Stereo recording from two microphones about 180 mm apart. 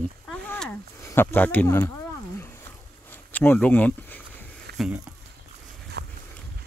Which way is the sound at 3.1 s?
10° left (ahead or behind).